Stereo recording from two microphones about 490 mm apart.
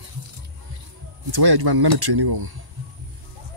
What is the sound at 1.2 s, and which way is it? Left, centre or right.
Speech, right.